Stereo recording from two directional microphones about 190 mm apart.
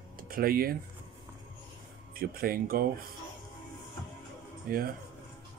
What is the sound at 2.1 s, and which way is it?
Speech, 50° right (ahead or behind).